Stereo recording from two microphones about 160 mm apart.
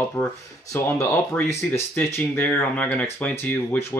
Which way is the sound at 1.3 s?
15° left (ahead or behind).